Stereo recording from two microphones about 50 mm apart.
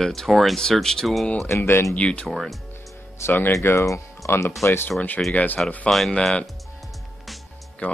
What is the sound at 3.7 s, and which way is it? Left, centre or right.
Speech, left.